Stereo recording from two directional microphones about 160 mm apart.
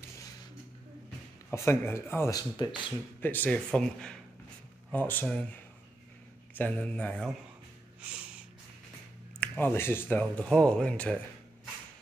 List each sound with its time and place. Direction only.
1.5 s speech: 15° left (ahead or behind)
3.2 s speech: 10° left (ahead or behind)
6.5 s speech: 10° left (ahead or behind)
9.4 s speech: 10° left (ahead or behind)